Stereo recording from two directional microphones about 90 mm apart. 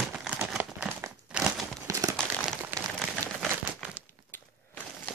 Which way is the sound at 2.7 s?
20° right (ahead or behind).